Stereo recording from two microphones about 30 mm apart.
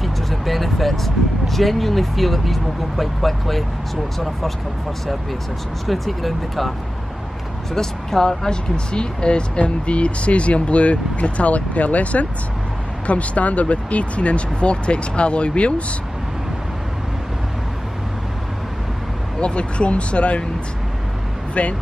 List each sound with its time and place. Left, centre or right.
0.0 s speech: centre
5.9 s speech: centre
7.7 s speech: centre; by 15.7 s left
19.4 s speech: left
21.6 s speech: left